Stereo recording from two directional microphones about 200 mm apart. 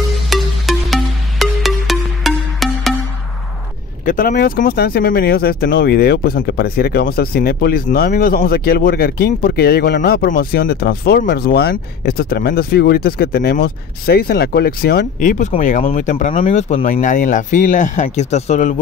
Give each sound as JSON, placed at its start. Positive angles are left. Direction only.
{"t": 0.1, "sound": "music", "side_deg": 0}
{"t": 4.0, "sound": "speech", "side_deg": 40}